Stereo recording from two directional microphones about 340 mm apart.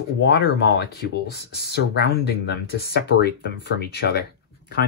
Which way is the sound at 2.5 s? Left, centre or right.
Left.